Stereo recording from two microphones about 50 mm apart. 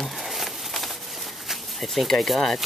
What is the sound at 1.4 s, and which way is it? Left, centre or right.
Speech, centre.